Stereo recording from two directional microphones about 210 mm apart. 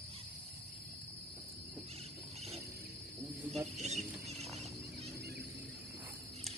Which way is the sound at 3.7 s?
30° right (ahead or behind).